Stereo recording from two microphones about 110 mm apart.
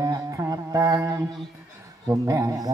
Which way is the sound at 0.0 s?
30° right (ahead or behind).